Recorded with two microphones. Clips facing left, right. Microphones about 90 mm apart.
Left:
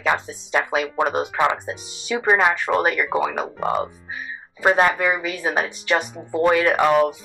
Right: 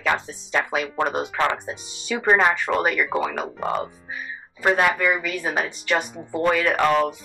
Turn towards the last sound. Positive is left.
turn(degrees=10)  # may be behind; listen again after turning